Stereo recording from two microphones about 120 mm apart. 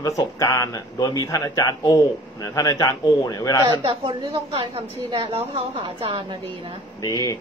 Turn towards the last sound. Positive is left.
turn(degrees=30)  # may be behind; listen again after turning